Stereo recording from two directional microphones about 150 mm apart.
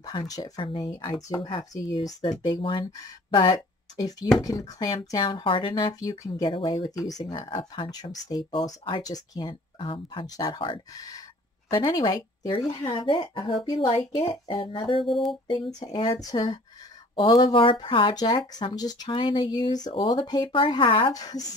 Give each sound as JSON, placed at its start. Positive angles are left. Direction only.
{"t": 0.0, "sound": "speech", "side_deg": 25}